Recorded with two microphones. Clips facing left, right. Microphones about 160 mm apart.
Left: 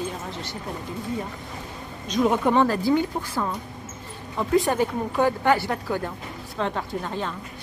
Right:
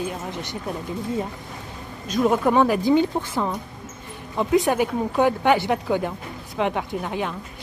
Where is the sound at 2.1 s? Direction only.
5° right (ahead or behind).